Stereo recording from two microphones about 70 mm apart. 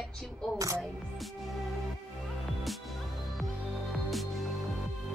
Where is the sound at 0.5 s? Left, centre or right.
Right.